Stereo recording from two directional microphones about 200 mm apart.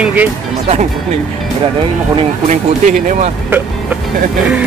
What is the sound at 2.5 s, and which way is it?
Speech, 40° right (ahead or behind).